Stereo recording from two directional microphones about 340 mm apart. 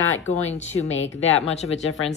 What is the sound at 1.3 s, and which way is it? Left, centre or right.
Speech, centre.